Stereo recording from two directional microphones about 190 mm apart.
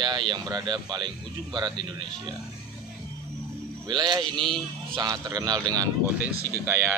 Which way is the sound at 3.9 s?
25° right (ahead or behind).